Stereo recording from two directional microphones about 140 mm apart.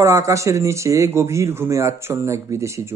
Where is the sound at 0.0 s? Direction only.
20° right (ahead or behind).